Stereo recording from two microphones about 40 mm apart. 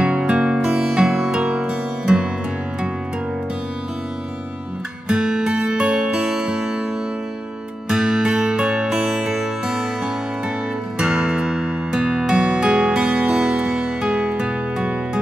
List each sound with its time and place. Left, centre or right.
0.0 s music: right
5.0 s music: centre
7.9 s music: centre
11.0 s music: right